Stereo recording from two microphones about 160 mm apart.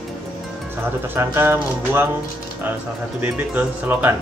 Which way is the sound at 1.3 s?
15° right (ahead or behind).